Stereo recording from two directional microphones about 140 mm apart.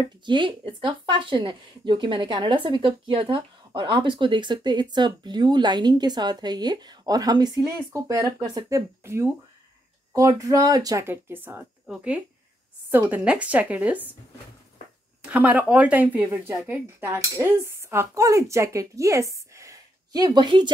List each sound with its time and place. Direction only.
0.2 s speech: 35° right (ahead or behind); by 9.3 s 20° right (ahead or behind)
10.1 s cutlery: 25° right (ahead or behind)
11.9 s a woman's voice: 10° right (ahead or behind)
15.2 s a woman's voice: 10° right (ahead or behind)
16.3 s cutlery: 15° right (ahead or behind); by 20.7 s 35° right (ahead or behind)